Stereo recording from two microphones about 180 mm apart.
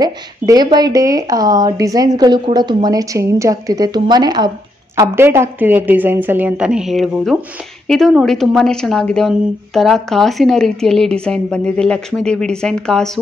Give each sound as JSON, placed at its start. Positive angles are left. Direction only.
{"t": 0.0, "sound": "a woman's voice", "side_deg": -20}